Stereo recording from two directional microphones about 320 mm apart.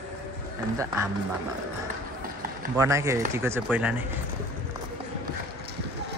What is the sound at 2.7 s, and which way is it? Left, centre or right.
Speech, centre.